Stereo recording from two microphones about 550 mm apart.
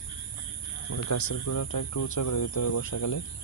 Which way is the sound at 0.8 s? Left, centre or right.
Left.